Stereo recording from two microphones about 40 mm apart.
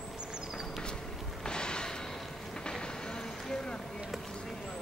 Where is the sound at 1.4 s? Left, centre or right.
Left.